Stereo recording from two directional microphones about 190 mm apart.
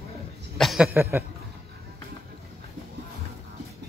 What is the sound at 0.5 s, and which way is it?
Speech, centre (ahead or behind).